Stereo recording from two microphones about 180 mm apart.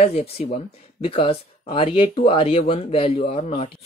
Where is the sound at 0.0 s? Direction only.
35° left (ahead or behind).